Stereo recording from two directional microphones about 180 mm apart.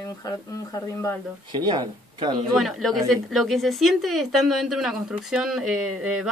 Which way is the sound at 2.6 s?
Centre (ahead or behind).